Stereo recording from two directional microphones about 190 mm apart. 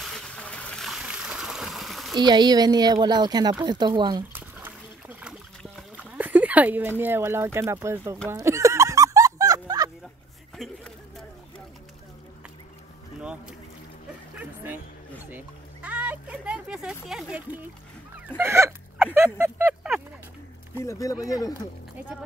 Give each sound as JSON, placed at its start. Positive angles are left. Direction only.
{"t": 0.0, "sound": "a sound", "side_deg": 5}
{"t": 2.1, "sound": "speech", "side_deg": -20}
{"t": 4.3, "sound": "splash", "side_deg": -10}
{"t": 6.1, "sound": "speech", "side_deg": -10}
{"t": 8.3, "sound": "music", "side_deg": -15}
{"t": 10.6, "sound": "a sound", "side_deg": 0}
{"t": 13.2, "sound": "boat", "side_deg": -5}
{"t": 14.4, "sound": "music", "side_deg": -10}
{"t": 18.4, "sound": "hiccup", "side_deg": -15}
{"t": 19.1, "sound": "a sound", "side_deg": -5}
{"t": 20.7, "sound": "speech", "side_deg": 15}